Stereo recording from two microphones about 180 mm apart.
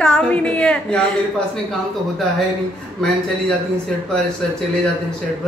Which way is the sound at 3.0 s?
5° left (ahead or behind).